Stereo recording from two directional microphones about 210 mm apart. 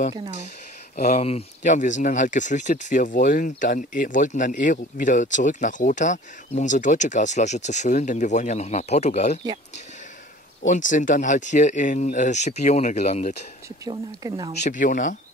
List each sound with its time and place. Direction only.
0.9 s speech: 40° left (ahead or behind)
10.7 s speech: 35° left (ahead or behind)
13.8 s speech: 20° right (ahead or behind)
14.6 s speech: 35° left (ahead or behind)